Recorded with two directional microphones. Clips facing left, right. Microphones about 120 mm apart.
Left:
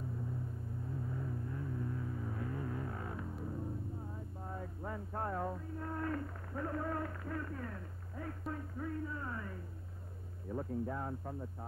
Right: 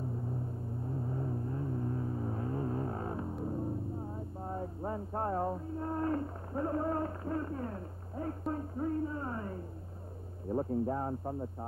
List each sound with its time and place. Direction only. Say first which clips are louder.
0.8 s vehicle: right 5 dB; 35° right (ahead or behind)
10.5 s speech: right 7 dB; 35° right (ahead or behind)